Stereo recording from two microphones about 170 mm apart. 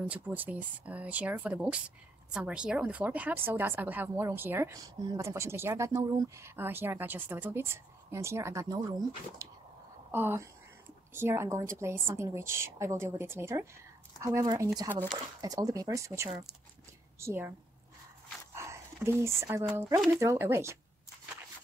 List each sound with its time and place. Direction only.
0.1 s speech: 10° right (ahead or behind)
18.5 s a sound: 15° right (ahead or behind)
20.2 s speech: 15° right (ahead or behind)